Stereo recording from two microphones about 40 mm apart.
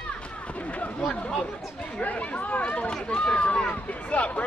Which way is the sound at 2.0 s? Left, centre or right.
Left.